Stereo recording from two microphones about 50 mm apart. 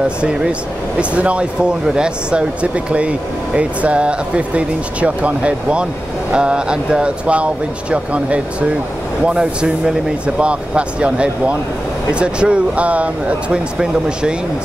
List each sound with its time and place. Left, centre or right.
0.2 s speech: centre
13.7 s speech: centre